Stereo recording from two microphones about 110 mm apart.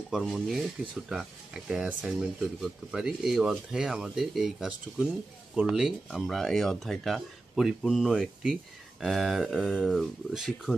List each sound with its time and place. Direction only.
0.1 s speech: centre (ahead or behind)